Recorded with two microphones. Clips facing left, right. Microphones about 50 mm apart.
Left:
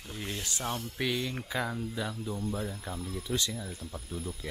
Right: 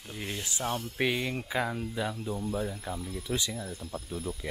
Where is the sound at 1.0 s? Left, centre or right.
Centre.